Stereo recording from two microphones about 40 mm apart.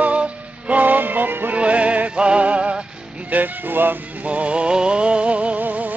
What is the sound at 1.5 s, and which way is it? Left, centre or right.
Music, right.